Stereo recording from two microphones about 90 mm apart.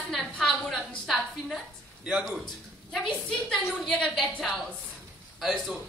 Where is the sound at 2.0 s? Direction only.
10° right (ahead or behind).